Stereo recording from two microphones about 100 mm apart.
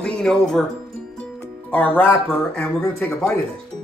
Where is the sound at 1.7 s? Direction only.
15° left (ahead or behind).